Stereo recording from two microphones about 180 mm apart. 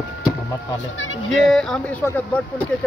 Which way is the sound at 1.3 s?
Centre (ahead or behind).